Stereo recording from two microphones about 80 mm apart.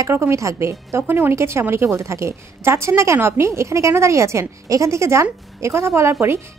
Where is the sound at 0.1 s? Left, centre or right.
Right.